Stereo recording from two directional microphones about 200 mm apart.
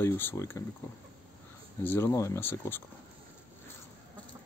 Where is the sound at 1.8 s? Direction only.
10° left (ahead or behind).